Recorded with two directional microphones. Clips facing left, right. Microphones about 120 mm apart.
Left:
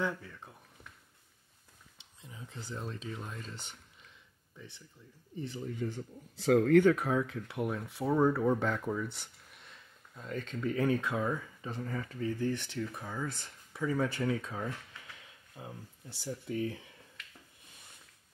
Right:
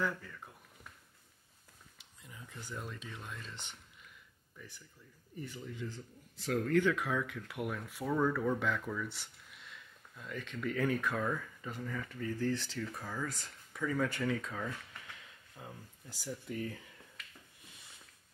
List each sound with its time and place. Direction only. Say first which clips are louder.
0.0 s speech: left 2 dB; 20° left (ahead or behind)
2.0 s speech: left 4 dB; 25° left (ahead or behind); by 4.1 s 40° left (ahead or behind)
4.6 s speech: left 2 dB; 25° left (ahead or behind)
5.7 s speech: left 6 dB; 55° left (ahead or behind); by 6.8 s 90° left
6.8 s speech: left 6 dB; 40° left (ahead or behind)
9.1 s a sound: even; 45° left (ahead or behind)
10.6 s speech: left 3 dB; 25° left (ahead or behind)
11.8 s speech: left 3 dB; 35° left (ahead or behind)
12.2 s speech: left 2 dB; 15° left (ahead or behind)